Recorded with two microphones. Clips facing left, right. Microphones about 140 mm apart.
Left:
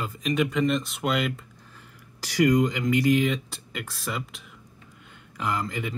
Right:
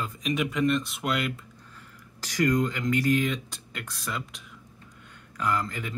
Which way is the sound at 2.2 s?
10° left (ahead or behind).